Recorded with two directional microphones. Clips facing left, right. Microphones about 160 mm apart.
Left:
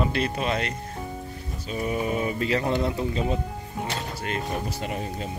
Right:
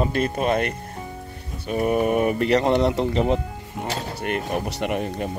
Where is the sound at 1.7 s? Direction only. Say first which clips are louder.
Right 7 dB; 60° right (ahead or behind).